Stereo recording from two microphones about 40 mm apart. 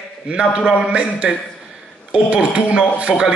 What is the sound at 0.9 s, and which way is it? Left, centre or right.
A man's voice, right.